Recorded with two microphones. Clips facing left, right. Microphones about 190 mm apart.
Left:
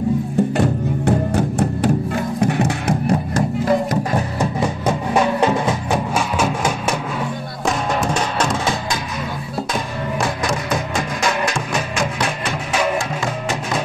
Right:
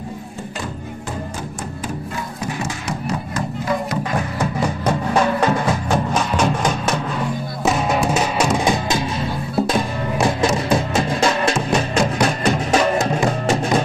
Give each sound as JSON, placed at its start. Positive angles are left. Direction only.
{"t": 0.6, "sound": "music", "side_deg": 65}
{"t": 3.3, "sound": "music", "side_deg": 40}
{"t": 4.4, "sound": "music", "side_deg": 15}
{"t": 7.6, "sound": "music", "side_deg": -5}
{"t": 9.8, "sound": "music", "side_deg": -25}